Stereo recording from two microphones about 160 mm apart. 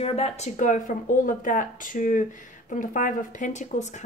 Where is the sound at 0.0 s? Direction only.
40° left (ahead or behind).